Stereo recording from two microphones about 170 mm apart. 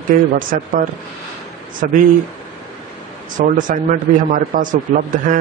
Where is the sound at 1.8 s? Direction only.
55° right (ahead or behind).